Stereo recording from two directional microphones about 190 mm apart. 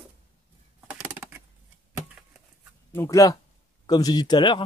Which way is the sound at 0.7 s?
10° right (ahead or behind).